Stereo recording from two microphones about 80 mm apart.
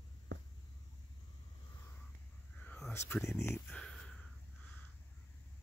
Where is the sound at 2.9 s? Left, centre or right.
Left.